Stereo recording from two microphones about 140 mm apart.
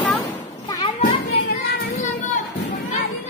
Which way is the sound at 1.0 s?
80° left.